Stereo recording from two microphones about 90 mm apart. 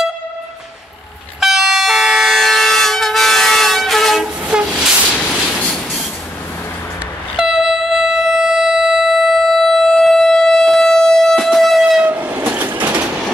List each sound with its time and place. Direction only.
1.4 s train: 5° right (ahead or behind)
4.5 s train: 10° right (ahead or behind)
7.3 s train: 5° right (ahead or behind)
12.0 s train: 20° right (ahead or behind)